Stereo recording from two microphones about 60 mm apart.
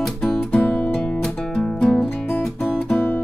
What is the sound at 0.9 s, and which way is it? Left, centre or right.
Music, centre.